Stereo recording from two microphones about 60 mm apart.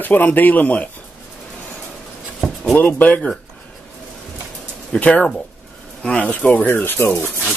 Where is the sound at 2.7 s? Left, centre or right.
Left.